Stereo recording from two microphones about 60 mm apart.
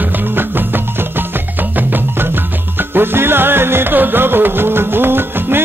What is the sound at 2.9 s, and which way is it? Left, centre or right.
Music, right.